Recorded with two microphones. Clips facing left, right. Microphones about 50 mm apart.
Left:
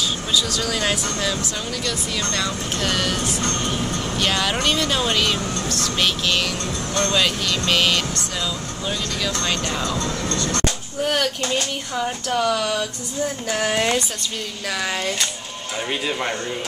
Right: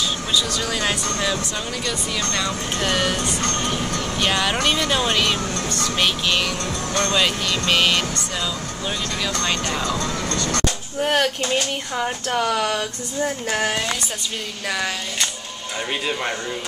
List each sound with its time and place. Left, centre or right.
0.3 s speech: centre
4.2 s speech: centre
11.0 s speech: right
13.7 s speech: left
14.7 s speech: centre